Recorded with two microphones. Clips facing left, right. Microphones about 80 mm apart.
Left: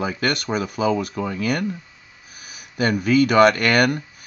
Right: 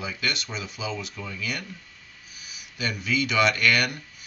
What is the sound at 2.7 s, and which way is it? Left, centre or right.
Speech, left.